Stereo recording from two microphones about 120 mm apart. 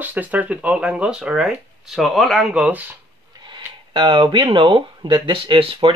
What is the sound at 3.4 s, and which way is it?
Speech, 40° right (ahead or behind).